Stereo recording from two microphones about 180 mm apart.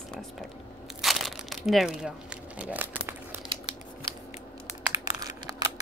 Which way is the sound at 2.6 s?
10° right (ahead or behind).